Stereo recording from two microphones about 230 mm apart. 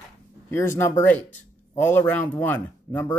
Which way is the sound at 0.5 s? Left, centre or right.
Centre.